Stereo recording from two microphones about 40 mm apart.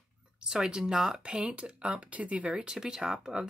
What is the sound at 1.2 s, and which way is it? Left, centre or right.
Speech, right.